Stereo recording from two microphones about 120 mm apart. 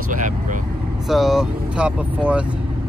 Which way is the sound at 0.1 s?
90° right.